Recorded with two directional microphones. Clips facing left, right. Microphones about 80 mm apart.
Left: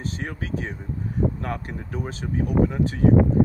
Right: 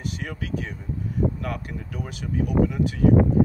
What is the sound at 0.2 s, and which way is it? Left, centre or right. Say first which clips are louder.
Speech: left 1 dB; left.